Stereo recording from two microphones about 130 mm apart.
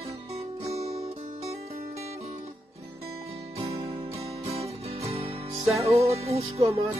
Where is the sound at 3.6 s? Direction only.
50° right (ahead or behind).